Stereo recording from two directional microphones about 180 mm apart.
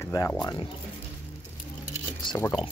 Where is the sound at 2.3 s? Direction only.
25° left (ahead or behind).